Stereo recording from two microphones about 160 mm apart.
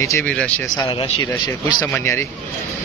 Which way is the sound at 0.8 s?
30° left (ahead or behind).